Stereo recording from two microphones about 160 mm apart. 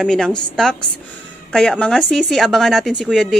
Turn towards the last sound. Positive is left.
turn(degrees=0)  # may be behind; listen again after turning